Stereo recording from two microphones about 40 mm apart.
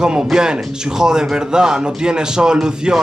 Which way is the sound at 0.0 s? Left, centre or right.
Centre.